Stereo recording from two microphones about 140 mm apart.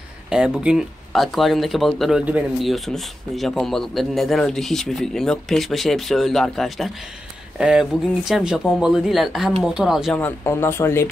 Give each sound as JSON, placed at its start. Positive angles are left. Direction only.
{"t": 0.3, "sound": "speech", "side_deg": -5}
{"t": 10.1, "sound": "speech", "side_deg": 15}